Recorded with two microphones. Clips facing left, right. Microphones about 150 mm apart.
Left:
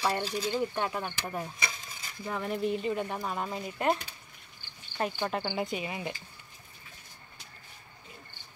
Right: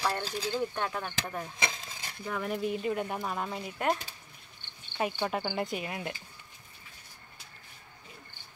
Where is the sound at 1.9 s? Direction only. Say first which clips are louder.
Right 2 dB; 90° right.